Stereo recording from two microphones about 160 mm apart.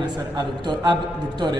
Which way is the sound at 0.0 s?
25° right (ahead or behind).